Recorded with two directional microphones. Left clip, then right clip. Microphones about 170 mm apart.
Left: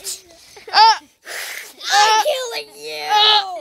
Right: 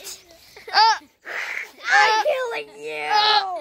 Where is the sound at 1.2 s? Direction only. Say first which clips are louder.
Right 1 dB; 35° right (ahead or behind).